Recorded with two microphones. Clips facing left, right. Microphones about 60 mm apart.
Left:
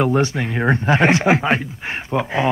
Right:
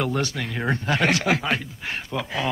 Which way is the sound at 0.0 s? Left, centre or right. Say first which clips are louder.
Left 7 dB; left.